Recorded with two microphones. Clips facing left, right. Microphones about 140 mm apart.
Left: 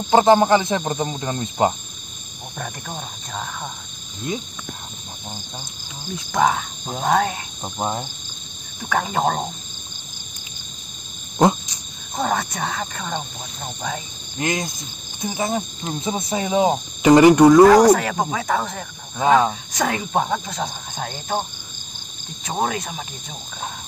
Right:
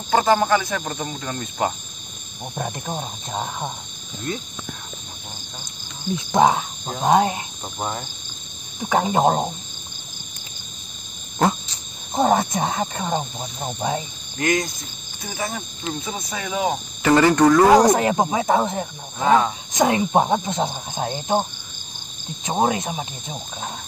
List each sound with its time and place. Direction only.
0.1 s speech: 20° left (ahead or behind)
2.5 s speech: 20° right (ahead or behind)
4.3 s speech: 15° left (ahead or behind)
6.1 s speech: 25° right (ahead or behind)
7.6 s speech: 15° left (ahead or behind)
8.8 s speech: 20° right (ahead or behind)
11.3 s a sound: 15° left (ahead or behind)
12.2 s speech: 25° right (ahead or behind)
14.4 s speech: 20° left (ahead or behind)
17.6 s speech: 10° right (ahead or behind)
17.9 s speech: 20° right (ahead or behind)